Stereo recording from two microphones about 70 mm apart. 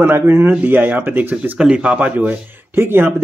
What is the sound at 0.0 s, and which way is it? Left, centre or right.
Speech, right.